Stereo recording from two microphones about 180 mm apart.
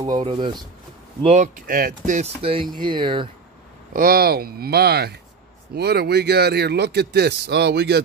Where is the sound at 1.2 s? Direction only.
40° right (ahead or behind).